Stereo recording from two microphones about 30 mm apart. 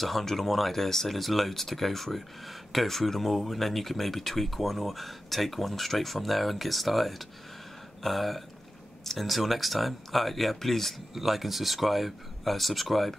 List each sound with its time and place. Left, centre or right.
0.0 s speech: centre
9.3 s speech: centre
11.1 s speech: centre